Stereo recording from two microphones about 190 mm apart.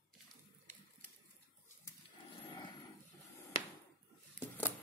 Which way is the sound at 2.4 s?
25° left (ahead or behind).